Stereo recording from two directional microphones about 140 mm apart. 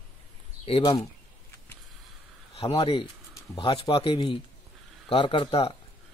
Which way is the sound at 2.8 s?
35° left (ahead or behind).